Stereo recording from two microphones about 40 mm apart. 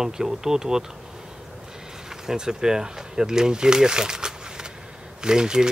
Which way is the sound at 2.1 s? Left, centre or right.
Centre.